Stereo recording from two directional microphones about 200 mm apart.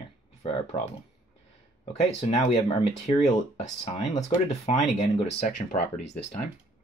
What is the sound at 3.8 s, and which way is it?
Speech, 35° left (ahead or behind).